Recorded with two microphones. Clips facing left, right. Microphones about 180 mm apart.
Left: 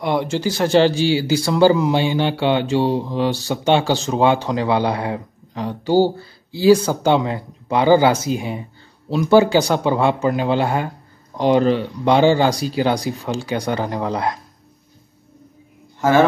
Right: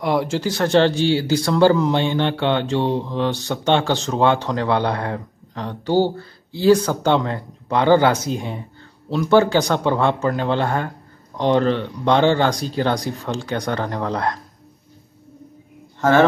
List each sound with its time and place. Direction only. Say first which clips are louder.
0.0 s speech: even; centre (ahead or behind)
16.0 s speech: even; 10° left (ahead or behind)